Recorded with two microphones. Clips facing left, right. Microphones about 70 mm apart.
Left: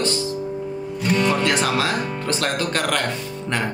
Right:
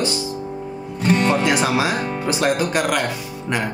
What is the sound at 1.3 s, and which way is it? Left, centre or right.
Speech, centre.